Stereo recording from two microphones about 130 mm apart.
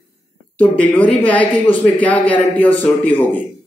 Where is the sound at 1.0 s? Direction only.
10° left (ahead or behind).